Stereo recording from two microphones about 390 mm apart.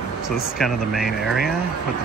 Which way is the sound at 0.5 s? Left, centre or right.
Centre.